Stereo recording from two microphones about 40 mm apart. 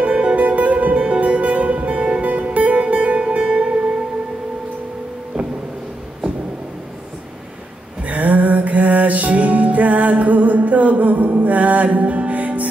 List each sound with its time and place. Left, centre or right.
0.0 s music: right
8.0 s music: right